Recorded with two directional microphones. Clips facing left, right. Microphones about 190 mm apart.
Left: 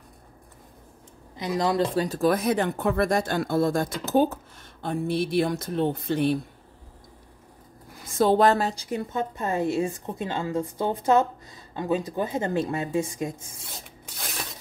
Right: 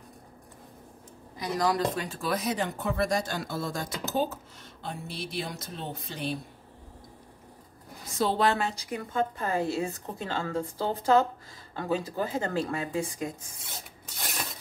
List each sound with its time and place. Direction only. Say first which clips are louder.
1.3 s speech: left 3 dB; 25° left (ahead or behind); by 6.3 s 55° left (ahead or behind)
8.2 s a woman's voice: left 6 dB; 50° left (ahead or behind); by 13.5 s 25° left (ahead or behind)
14.1 s a sound: even; centre (ahead or behind)